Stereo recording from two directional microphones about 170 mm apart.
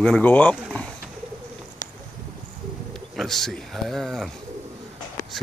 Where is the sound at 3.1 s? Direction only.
Centre (ahead or behind).